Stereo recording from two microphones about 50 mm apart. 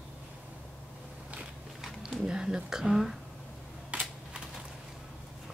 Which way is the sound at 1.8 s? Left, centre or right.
Centre.